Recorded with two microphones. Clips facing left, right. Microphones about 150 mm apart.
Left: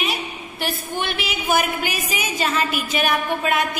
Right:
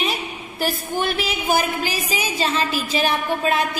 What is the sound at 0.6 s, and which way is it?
A woman's voice, 40° right (ahead or behind).